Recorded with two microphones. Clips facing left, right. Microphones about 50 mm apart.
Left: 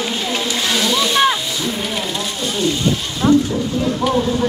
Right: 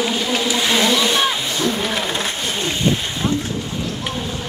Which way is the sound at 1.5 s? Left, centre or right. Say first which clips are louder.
Right 2 dB; right.